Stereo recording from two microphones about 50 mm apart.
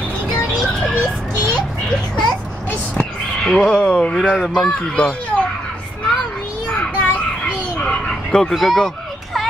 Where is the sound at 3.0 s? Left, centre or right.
Centre.